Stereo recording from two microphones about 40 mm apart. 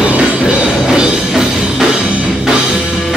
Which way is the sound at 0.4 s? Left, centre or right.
Right.